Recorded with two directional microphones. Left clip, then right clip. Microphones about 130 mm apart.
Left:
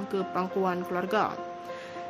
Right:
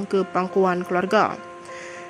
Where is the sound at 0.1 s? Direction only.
40° right (ahead or behind).